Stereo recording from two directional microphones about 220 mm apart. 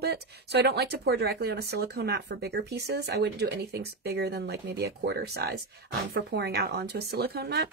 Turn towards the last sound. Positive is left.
turn(degrees=-45)  # may be behind; listen again after turning